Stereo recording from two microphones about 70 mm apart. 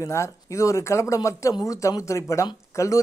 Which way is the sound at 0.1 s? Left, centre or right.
Left.